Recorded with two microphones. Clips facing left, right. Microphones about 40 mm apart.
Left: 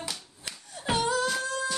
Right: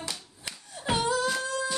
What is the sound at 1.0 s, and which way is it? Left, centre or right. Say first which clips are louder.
Beatboxing: even; centre.